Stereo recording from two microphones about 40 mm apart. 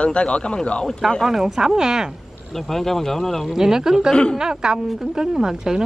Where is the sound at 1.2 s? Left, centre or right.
Centre.